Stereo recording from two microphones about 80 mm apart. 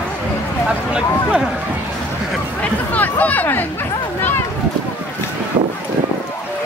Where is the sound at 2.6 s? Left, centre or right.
Centre.